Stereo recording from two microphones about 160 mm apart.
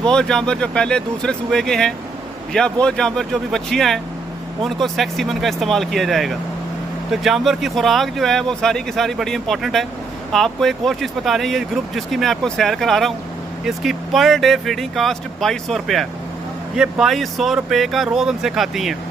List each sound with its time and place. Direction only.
0.0 s speech: 5° left (ahead or behind)